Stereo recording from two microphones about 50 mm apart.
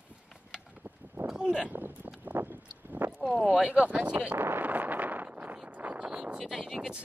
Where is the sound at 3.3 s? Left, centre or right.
Right.